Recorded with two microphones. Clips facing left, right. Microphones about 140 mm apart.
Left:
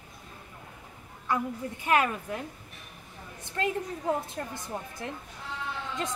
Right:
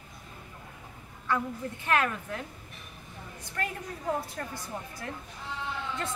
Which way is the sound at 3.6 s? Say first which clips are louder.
Left 5 dB; 25° left (ahead or behind).